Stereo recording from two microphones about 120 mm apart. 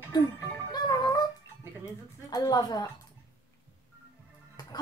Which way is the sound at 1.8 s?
30° left (ahead or behind).